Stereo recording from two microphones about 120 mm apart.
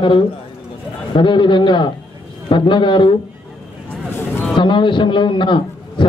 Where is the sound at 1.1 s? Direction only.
40° left (ahead or behind).